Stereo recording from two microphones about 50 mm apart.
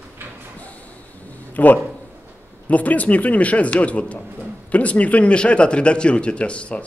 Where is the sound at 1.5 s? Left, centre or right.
Left.